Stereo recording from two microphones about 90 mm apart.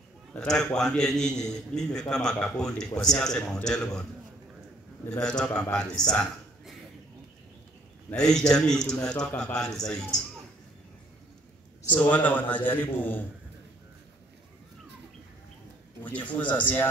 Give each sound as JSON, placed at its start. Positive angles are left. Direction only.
{"t": 0.3, "sound": "a man's voice", "side_deg": 10}
{"t": 5.4, "sound": "a man's voice", "side_deg": 10}
{"t": 8.1, "sound": "a man's voice", "side_deg": 5}
{"t": 11.9, "sound": "a man's voice", "side_deg": 15}
{"t": 16.0, "sound": "a man's voice", "side_deg": 15}